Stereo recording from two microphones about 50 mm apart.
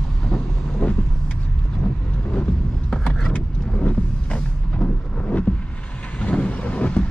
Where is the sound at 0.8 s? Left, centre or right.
Left.